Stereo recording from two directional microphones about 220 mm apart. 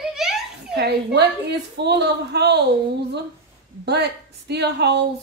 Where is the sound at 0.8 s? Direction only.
45° right (ahead or behind).